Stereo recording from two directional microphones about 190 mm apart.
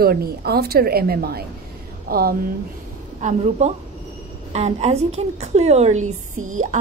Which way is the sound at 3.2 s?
40° right (ahead or behind).